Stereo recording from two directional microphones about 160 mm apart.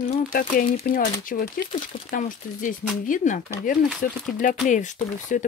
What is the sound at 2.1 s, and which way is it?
Speech, 55° left (ahead or behind).